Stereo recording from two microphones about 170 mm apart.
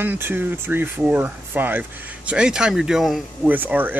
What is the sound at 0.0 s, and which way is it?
Speech, 10° right (ahead or behind).